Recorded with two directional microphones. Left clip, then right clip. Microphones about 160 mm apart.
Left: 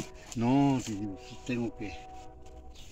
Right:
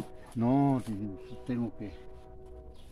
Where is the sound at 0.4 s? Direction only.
45° right (ahead or behind).